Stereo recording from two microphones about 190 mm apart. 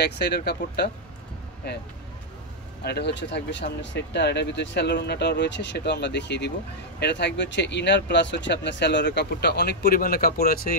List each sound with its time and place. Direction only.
0.0 s speech: 60° left (ahead or behind)
2.8 s speech: 60° left (ahead or behind)